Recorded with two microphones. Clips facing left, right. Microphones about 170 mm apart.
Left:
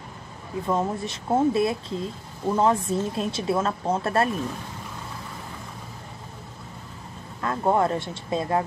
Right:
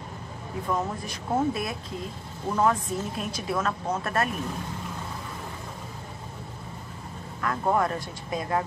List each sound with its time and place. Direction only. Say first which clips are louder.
0.7 s speech: left 4 dB; 25° left (ahead or behind)
7.4 s speech: left 3 dB; 25° left (ahead or behind)